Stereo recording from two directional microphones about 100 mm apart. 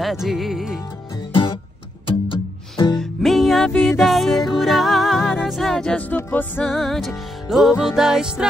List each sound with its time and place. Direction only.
0.0 s music: 5° right (ahead or behind)
1.3 s music: 60° left (ahead or behind)
3.0 s music: centre (ahead or behind)
3.7 s music: 20° left (ahead or behind)
4.0 s music: centre (ahead or behind); by 6.7 s 20° left (ahead or behind)
6.7 s music: centre (ahead or behind)